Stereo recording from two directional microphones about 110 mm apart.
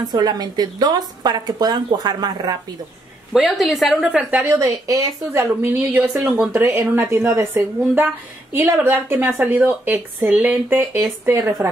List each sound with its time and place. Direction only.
0.0 s a woman's voice: 40° right (ahead or behind)
3.3 s a woman's voice: centre (ahead or behind)
4.1 s a woman's voice: 15° right (ahead or behind)
4.5 s speech: 25° right (ahead or behind)